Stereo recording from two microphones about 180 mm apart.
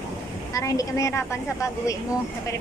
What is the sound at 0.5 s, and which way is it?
Speech, 20° left (ahead or behind).